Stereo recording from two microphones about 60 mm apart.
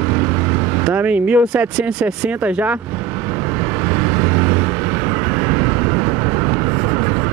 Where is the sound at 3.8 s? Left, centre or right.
Right.